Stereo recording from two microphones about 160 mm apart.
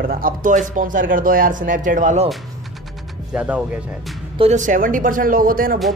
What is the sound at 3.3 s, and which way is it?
Speech, 10° right (ahead or behind).